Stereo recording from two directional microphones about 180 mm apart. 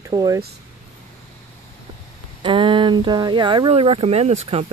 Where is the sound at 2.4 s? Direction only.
30° right (ahead or behind).